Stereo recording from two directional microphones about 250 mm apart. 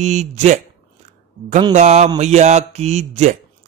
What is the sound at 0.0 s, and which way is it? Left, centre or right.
A man's voice, right.